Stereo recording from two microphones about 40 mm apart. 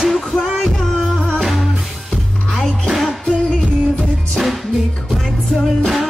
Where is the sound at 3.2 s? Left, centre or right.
Left.